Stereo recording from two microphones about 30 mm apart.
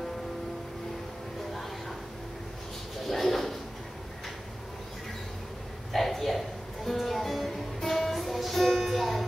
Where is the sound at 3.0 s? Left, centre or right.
Centre.